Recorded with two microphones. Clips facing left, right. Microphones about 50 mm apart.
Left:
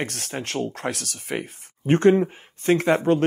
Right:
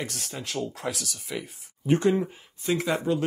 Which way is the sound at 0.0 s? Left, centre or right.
Left.